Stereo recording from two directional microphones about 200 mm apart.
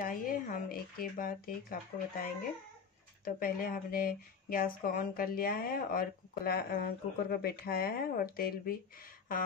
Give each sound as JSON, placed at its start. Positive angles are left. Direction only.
{"t": 0.0, "sound": "speech", "side_deg": 45}